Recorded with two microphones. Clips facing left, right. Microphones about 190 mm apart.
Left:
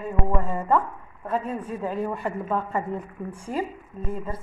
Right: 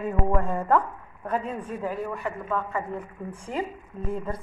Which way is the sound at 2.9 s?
10° left (ahead or behind).